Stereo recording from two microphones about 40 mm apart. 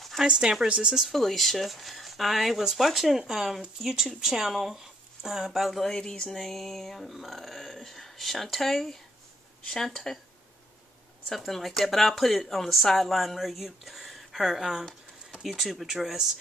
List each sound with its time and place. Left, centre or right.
0.2 s speech: centre
1.0 s speech: centre
5.9 s speech: centre
6.3 s speech: centre
10.1 s speech: centre
11.2 s speech: centre